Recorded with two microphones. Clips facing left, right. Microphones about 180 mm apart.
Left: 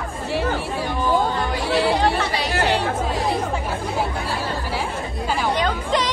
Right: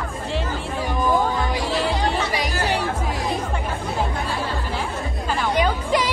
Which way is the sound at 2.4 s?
65° left (ahead or behind).